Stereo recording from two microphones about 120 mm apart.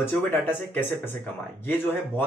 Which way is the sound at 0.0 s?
20° left (ahead or behind).